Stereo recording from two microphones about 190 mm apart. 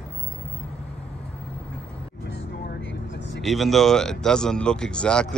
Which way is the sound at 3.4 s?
Centre (ahead or behind).